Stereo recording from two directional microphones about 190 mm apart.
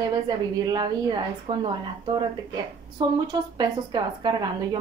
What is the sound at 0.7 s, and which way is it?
Speech, 20° right (ahead or behind).